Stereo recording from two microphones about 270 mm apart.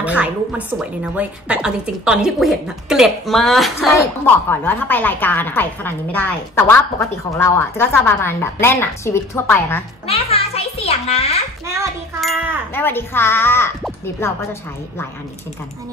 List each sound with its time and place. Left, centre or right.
0.0 s a woman's voice: centre
10.0 s music: left
11.6 s a child's voice: centre
12.2 s a sound: centre
12.7 s a woman's voice: centre